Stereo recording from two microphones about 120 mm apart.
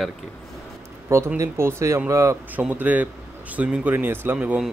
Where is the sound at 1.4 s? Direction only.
20° right (ahead or behind).